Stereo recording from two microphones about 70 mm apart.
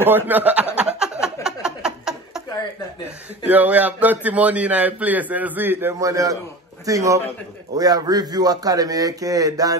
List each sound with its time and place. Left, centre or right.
0.0 s speech: right
0.9 s a sound: centre
3.4 s a man's voice: right
5.9 s a man's voice: right
7.7 s a man's voice: right